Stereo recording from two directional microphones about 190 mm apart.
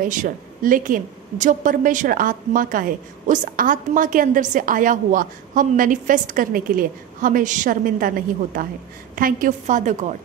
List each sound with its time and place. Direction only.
0.0 s a woman's voice: 45° right (ahead or behind)